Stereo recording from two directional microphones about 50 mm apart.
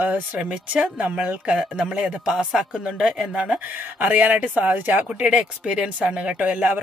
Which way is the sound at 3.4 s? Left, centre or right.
Right.